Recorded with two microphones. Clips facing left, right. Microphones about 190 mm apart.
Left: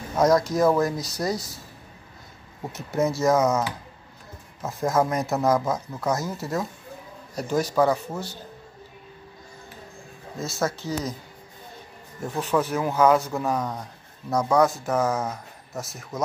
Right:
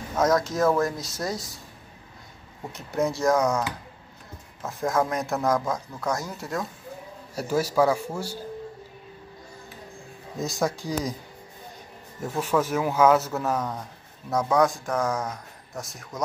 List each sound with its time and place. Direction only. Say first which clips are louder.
0.2 s speech: left 3 dB; centre (ahead or behind)
2.7 s speech: left 2 dB; centre (ahead or behind)
4.6 s speech: left 2 dB; centre (ahead or behind)
7.3 s a man's voice: even; 10° right (ahead or behind)
10.4 s a man's voice: right 1 dB; 15° right (ahead or behind)
12.4 s speech: even; 10° right (ahead or behind)
13.6 s speech: left 1 dB; 10° left (ahead or behind)